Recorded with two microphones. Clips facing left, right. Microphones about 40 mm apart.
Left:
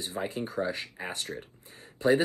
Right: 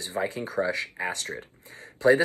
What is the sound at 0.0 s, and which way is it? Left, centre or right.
Speech, right.